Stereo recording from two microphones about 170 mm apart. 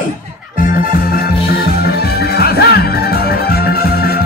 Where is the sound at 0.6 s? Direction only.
55° left (ahead or behind).